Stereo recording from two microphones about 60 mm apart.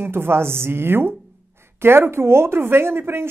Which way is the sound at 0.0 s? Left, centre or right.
Right.